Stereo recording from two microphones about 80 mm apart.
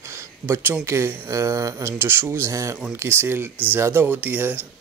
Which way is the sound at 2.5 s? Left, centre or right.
Right.